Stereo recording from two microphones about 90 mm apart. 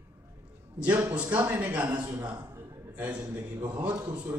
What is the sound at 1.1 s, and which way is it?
A man's voice, 15° right (ahead or behind).